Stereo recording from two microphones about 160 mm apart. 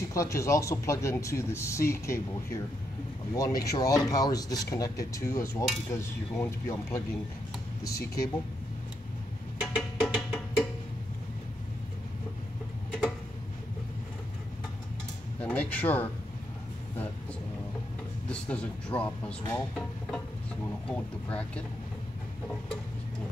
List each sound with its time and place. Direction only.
0.1 s speech: 20° left (ahead or behind)
9.6 s music: centre (ahead or behind)
15.4 s music: 10° left (ahead or behind)
18.3 s speech: 5° left (ahead or behind)